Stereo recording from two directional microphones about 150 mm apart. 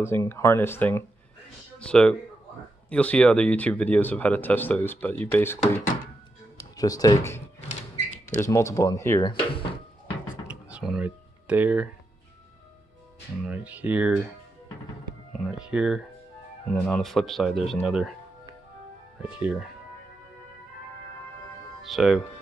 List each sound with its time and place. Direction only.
0.0 s speech: 15° left (ahead or behind)
6.8 s speech: 25° left (ahead or behind)
9.2 s drawer open or close: 35° left (ahead or behind)
10.4 s computer keyboard: 5° right (ahead or behind)
13.5 s speech: 10° right (ahead or behind)
15.3 s speech: 5° right (ahead or behind)
19.2 s speech: 10° right (ahead or behind)
21.8 s speech: centre (ahead or behind)